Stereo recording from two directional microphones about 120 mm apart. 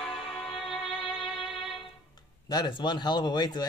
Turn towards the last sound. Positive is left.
turn(degrees=35)  # may be behind; listen again after turning